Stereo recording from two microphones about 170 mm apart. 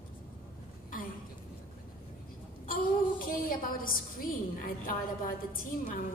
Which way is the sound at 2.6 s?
55° left (ahead or behind).